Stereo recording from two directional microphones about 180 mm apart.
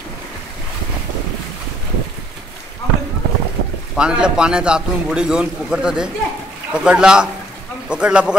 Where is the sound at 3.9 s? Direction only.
5° right (ahead or behind).